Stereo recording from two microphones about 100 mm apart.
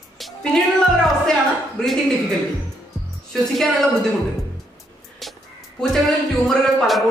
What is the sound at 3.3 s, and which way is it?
Speech, centre (ahead or behind).